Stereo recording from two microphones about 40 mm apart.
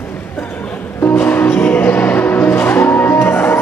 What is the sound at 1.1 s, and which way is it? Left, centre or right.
Music, left.